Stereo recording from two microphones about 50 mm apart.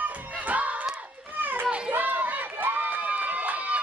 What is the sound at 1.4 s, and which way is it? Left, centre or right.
Children playing, right.